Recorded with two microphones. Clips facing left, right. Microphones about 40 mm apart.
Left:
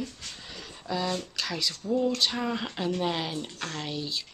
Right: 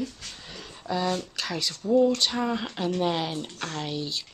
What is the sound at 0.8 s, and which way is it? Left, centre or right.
Speech, centre.